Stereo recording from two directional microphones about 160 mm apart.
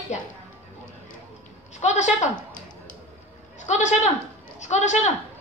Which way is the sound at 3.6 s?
45° left (ahead or behind).